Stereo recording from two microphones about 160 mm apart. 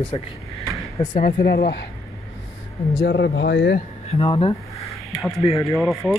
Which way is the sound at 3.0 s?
85° left.